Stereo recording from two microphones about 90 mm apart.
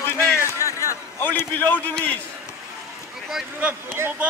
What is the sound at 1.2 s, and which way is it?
Speech, 20° left (ahead or behind).